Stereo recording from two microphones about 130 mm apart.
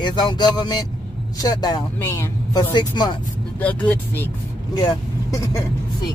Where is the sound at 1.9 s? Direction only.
20° left (ahead or behind).